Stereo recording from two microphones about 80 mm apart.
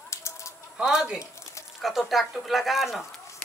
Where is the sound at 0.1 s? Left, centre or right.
Left.